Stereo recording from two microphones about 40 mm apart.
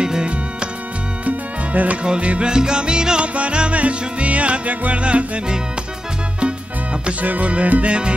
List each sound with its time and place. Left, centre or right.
0.0 s music: right
1.2 s music: right
6.4 s music: right